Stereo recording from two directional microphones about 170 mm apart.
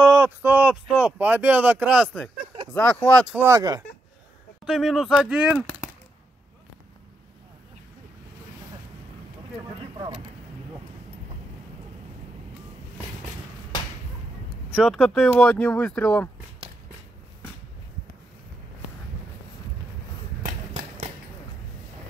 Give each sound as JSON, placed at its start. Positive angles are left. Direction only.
{"t": 0.0, "sound": "speech", "side_deg": -15}
{"t": 3.3, "sound": "speech", "side_deg": -15}
{"t": 4.6, "sound": "speech", "side_deg": 0}
{"t": 14.7, "sound": "speech", "side_deg": 0}